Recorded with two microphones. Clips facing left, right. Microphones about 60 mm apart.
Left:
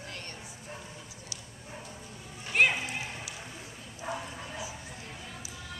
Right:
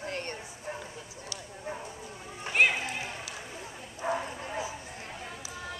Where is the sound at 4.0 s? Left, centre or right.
Right.